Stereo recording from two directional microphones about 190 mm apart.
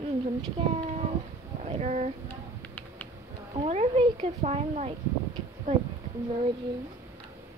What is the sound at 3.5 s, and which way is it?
Speech, 35° right (ahead or behind).